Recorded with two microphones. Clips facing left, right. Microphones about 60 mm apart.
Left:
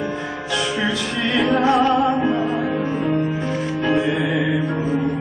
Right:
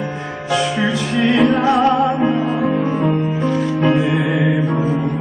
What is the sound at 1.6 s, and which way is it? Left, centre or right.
Music, right.